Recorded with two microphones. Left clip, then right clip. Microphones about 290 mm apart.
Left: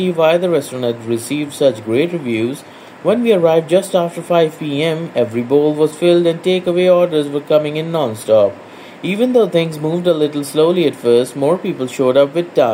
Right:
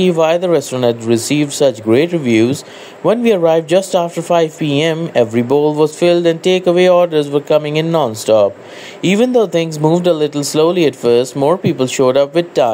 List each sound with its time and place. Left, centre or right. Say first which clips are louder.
0.0 s speech: right 1 dB; right